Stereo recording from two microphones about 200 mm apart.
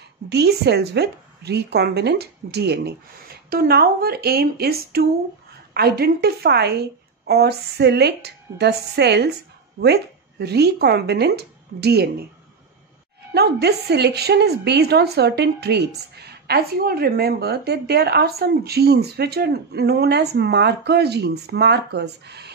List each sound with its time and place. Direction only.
0.3 s a woman's voice: 55° right (ahead or behind)
13.3 s a woman's voice: 55° right (ahead or behind)